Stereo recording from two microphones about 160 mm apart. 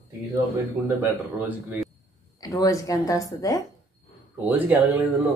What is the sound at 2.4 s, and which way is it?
A woman's voice, 20° left (ahead or behind).